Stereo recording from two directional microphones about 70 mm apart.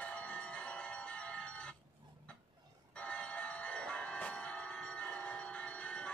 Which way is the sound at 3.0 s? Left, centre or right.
Centre.